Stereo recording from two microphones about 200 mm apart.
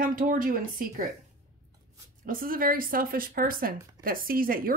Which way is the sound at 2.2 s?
45° right (ahead or behind).